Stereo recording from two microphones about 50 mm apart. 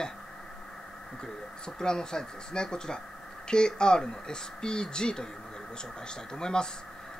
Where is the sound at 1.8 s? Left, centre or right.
Centre.